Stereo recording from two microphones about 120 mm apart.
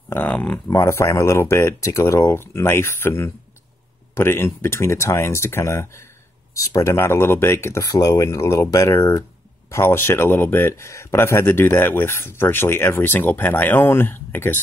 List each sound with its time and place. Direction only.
0.1 s speech: 15° left (ahead or behind)
0.7 s speech: 25° left (ahead or behind)